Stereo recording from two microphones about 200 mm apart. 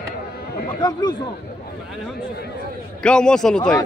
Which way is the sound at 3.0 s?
5° left (ahead or behind).